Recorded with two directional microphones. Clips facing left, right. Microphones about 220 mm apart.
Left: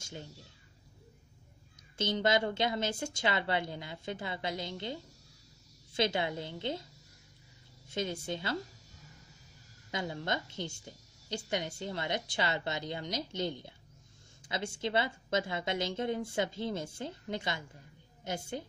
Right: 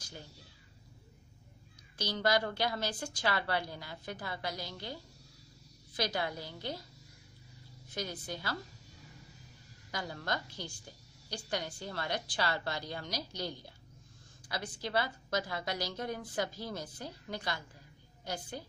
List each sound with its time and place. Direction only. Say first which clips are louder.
0.0 s speech: left 4 dB; 25° left (ahead or behind)
2.0 s a woman's voice: left 2 dB; 25° left (ahead or behind)
7.9 s a woman's voice: left 5 dB; 25° left (ahead or behind)
9.8 s a woman's voice: left 3 dB; 20° left (ahead or behind)